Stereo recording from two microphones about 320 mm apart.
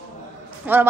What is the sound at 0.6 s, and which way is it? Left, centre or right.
Speech, centre.